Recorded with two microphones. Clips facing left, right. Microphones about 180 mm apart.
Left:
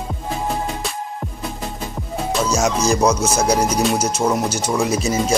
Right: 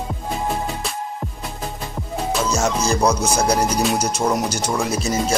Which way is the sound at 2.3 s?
5° left (ahead or behind).